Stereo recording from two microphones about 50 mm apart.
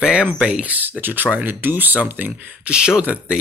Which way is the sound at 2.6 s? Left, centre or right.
Centre.